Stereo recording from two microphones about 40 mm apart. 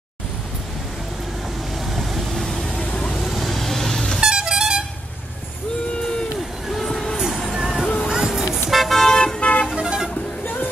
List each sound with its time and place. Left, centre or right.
1.9 s vehicle: centre
2.3 s vehicle: centre
3.2 s vehicle: centre
4.2 s vehicle: centre
6.7 s vehicle: centre
7.5 s vehicle: centre
8.6 s vehicle: centre
9.1 s vehicle: centre
9.4 s vehicle: left
9.8 s vehicle: right